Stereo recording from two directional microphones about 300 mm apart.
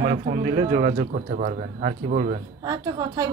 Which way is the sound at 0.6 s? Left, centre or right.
Right.